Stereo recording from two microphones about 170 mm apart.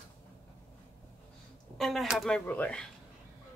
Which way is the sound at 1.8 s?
Centre (ahead or behind).